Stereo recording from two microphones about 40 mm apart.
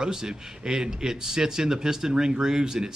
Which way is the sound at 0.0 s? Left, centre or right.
Centre.